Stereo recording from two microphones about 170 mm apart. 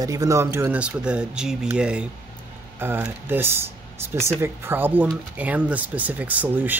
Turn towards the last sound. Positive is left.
turn(degrees=-10)  # may be behind; listen again after turning